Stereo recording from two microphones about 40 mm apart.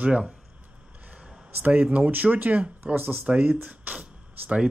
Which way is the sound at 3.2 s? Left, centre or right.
Right.